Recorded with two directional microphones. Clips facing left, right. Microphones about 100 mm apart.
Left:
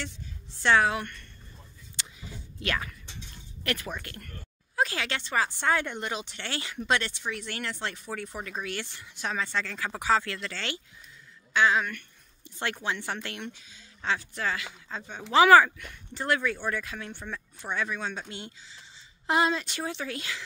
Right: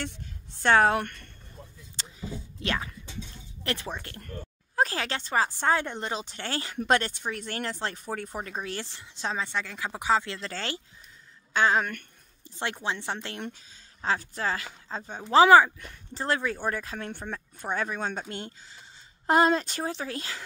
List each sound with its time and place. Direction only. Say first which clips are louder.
0.6 s speech: right 2 dB; 45° right (ahead or behind)
2.0 s a sound: right 6 dB; 30° right (ahead or behind)
3.6 s a woman's voice: even; 25° right (ahead or behind)
10.5 s speech: right 2 dB; 35° right (ahead or behind)
12.4 s a woman's voice: even; 25° right (ahead or behind)
13.4 s speech: right 2 dB; 40° right (ahead or behind)
15.4 s a woman's voice: even; 20° right (ahead or behind)
15.8 s speech: right 1 dB; 35° right (ahead or behind)